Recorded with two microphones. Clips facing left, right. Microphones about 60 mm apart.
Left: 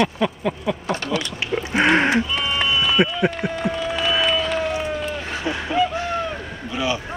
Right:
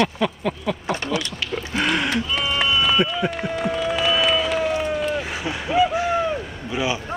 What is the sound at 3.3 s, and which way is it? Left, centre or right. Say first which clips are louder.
Run: even; centre.